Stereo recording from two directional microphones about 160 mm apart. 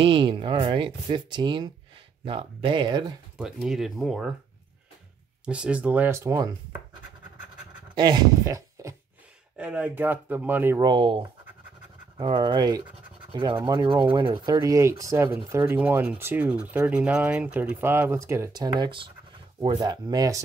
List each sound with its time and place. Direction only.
0.0 s speech: 30° right (ahead or behind)
3.3 s speech: 5° right (ahead or behind)
5.4 s speech: 10° right (ahead or behind)
7.9 s speech: 25° right (ahead or behind)
9.6 s speech: 10° right (ahead or behind)
10.8 s speech: 30° right (ahead or behind)